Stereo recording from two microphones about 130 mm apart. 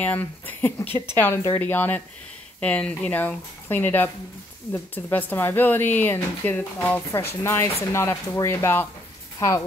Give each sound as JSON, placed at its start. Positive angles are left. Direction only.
{"t": 0.0, "sound": "a woman's voice", "side_deg": 10}